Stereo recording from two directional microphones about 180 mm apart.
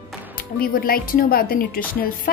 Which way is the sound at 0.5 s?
55° left (ahead or behind).